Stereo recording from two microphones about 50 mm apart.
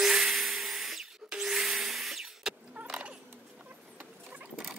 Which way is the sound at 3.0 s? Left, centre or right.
Right.